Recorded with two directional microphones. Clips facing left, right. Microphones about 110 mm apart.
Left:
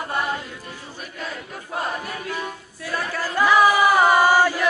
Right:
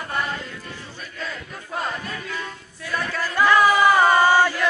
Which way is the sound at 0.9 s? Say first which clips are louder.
Left 1 dB; 15° left (ahead or behind).